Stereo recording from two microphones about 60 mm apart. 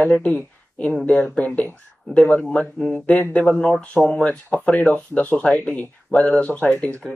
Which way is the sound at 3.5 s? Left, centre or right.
Centre.